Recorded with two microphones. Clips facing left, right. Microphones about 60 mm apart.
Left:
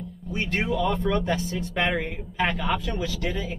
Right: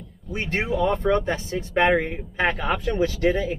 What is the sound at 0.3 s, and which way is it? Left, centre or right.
Speech, right.